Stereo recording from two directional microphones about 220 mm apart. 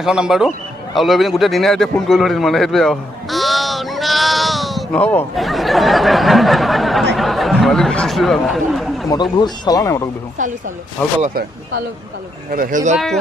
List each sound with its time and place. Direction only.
0.0 s a man's voice: 5° right (ahead or behind)
9.1 s speech: 20° left (ahead or behind)
11.1 s speech: 35° right (ahead or behind)
12.5 s speech: 35° right (ahead or behind)
12.9 s speech: centre (ahead or behind)